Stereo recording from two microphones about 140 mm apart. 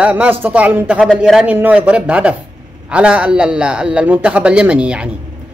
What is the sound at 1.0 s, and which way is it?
Speech, 5° left (ahead or behind).